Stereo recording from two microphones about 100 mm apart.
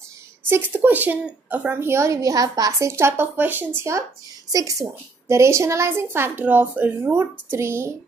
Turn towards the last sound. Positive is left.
turn(degrees=-25)  # may be behind; listen again after turning